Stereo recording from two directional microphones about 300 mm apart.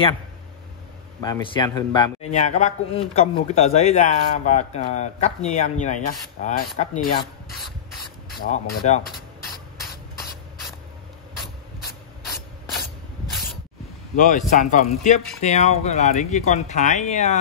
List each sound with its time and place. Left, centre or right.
1.2 s a man's voice: centre
8.4 s a man's voice: left
14.1 s a man's voice: left